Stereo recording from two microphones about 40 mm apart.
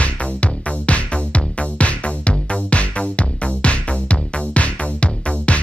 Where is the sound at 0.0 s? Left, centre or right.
Left.